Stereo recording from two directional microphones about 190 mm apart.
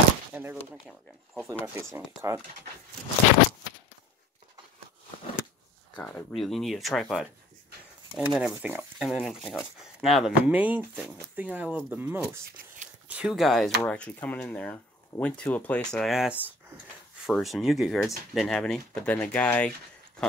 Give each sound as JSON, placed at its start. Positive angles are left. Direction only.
{"t": 0.3, "sound": "a sound", "side_deg": -10}
{"t": 0.8, "sound": "speech", "side_deg": 0}
{"t": 1.5, "sound": "speech", "side_deg": -15}
{"t": 5.9, "sound": "speech", "side_deg": 5}
{"t": 12.4, "sound": "speech", "side_deg": -50}
{"t": 13.1, "sound": "speech", "side_deg": -5}